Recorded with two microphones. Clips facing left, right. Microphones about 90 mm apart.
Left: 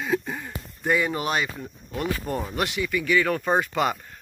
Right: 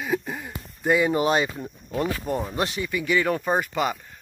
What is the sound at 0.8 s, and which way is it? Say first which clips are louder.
Speech: right 4 dB; 20° right (ahead or behind).